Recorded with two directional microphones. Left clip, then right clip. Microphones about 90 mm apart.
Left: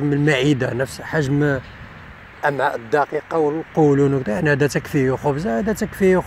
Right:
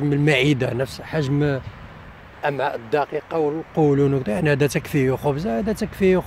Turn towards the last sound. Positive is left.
turn(degrees=-20)  # may be behind; listen again after turning